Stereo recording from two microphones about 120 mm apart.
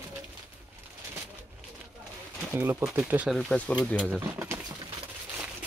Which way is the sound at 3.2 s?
Centre (ahead or behind).